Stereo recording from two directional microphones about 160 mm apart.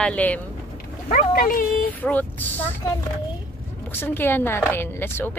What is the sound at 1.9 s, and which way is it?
A woman's voice, 10° left (ahead or behind).